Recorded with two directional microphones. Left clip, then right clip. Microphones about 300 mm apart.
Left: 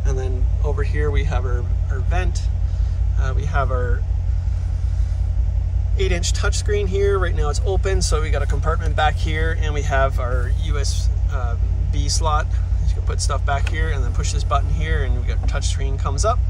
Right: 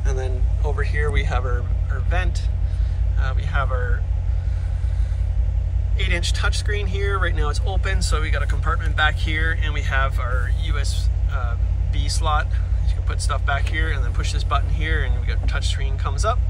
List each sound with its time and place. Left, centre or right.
0.0 s speech: centre
5.9 s speech: centre